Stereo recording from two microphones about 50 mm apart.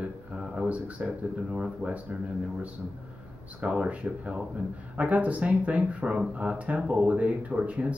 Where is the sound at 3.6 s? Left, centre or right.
Right.